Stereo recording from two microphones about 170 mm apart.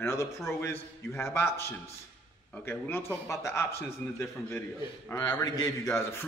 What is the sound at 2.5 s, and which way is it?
A man's voice, 10° left (ahead or behind).